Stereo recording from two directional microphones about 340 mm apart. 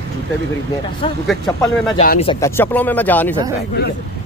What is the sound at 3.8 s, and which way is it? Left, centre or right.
Speech, left.